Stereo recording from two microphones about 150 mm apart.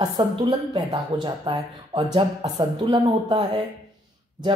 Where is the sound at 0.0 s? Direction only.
30° right (ahead or behind).